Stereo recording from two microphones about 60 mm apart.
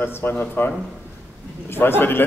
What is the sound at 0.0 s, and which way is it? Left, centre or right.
A man's voice, left.